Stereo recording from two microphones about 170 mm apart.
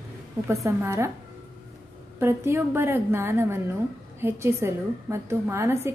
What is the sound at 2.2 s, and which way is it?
A woman's voice, 15° right (ahead or behind).